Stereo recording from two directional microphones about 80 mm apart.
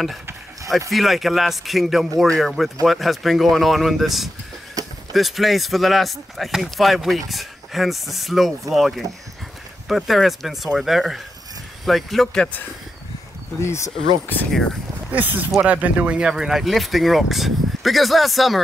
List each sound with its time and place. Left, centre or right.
0.8 s speech: centre
4.8 s a sound: right
5.1 s speech: centre
13.6 s speech: left
15.0 s speech: right; by 18.6 s centre